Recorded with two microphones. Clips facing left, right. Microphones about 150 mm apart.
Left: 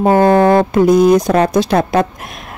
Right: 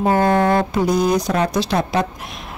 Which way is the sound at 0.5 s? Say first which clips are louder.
Left 7 dB; 50° left (ahead or behind).